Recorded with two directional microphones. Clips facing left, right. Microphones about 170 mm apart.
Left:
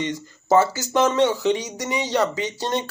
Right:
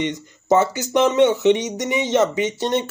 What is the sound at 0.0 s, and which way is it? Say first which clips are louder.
Speech: right 3 dB; 20° right (ahead or behind).